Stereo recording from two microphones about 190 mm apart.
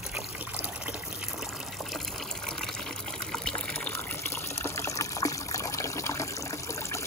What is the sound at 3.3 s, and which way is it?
Water, 5° left (ahead or behind).